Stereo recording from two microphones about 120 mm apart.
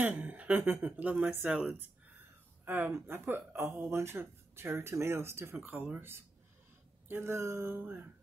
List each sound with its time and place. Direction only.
0.0 s speech: 15° right (ahead or behind)